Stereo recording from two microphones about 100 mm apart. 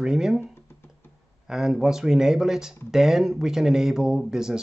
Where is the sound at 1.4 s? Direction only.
5° right (ahead or behind).